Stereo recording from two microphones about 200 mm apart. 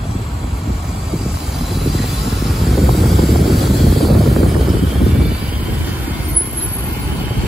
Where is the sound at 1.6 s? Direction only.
Centre (ahead or behind).